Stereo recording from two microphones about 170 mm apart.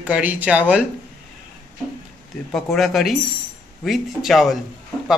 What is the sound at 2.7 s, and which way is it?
Speech, centre (ahead or behind).